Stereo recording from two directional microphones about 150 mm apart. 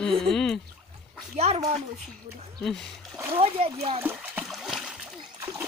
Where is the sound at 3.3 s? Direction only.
40° right (ahead or behind).